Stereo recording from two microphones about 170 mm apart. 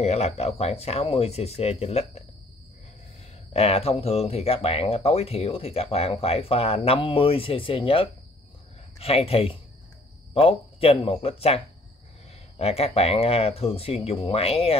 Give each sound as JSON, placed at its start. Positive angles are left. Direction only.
{"t": 0.0, "sound": "speech", "side_deg": 40}
{"t": 3.5, "sound": "speech", "side_deg": 35}